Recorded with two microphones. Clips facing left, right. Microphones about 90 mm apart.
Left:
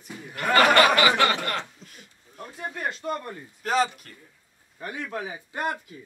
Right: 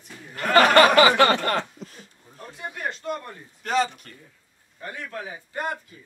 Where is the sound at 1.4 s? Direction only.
40° right (ahead or behind).